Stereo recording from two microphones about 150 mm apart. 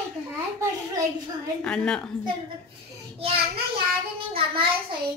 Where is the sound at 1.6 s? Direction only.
5° left (ahead or behind).